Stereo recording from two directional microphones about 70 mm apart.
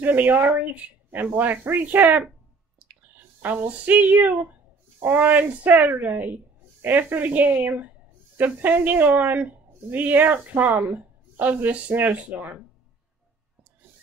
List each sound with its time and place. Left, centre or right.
0.0 s a woman's voice: right
3.4 s a woman's voice: right